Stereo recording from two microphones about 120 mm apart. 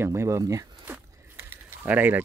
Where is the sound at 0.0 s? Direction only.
25° right (ahead or behind).